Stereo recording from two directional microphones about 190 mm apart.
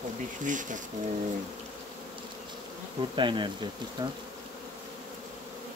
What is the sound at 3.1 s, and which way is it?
Bee, 25° right (ahead or behind).